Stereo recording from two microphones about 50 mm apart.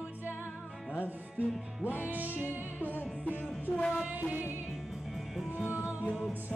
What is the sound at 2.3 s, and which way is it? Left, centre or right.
Music, left.